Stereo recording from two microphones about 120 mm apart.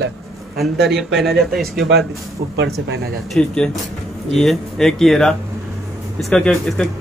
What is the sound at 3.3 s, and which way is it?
Speech, 5° left (ahead or behind).